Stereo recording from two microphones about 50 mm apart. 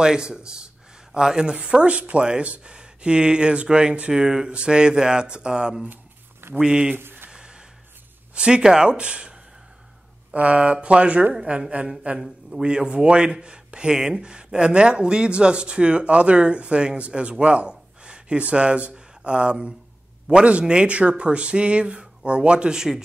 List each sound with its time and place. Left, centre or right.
0.0 s a man's voice: centre
7.0 s a sound: right
7.2 s music: centre
8.4 s a man's voice: centre
10.3 s a man's voice: right